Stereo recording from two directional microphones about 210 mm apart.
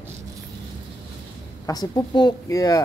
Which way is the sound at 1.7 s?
20° left (ahead or behind).